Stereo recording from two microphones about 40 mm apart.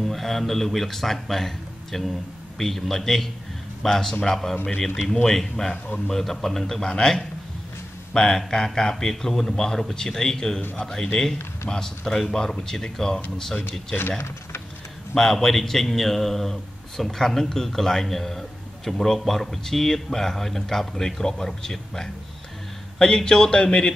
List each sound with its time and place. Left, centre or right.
0.0 s speech: centre
15.1 s speech: centre